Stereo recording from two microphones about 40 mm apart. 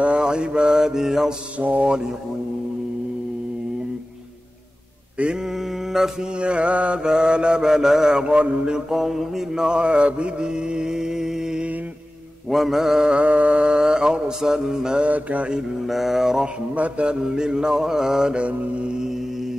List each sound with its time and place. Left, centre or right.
0.0 s mantra: right
1.6 s mantra: right
6.0 s mantra: centre
6.4 s mantra: right
7.0 s mantra: right
8.2 s mantra: right
8.9 s mantra: centre
9.6 s mantra: right
13.1 s mantra: right; by 15.0 s centre
15.0 s mantra: right
15.9 s mantra: centre
16.7 s mantra: right
17.2 s mantra: centre
18.3 s mantra: right